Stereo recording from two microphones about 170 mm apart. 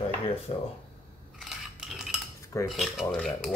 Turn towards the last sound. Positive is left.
turn(degrees=0)  # may be behind; listen again after turning